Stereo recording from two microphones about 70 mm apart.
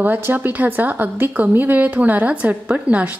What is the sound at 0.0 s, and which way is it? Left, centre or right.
Speech, right.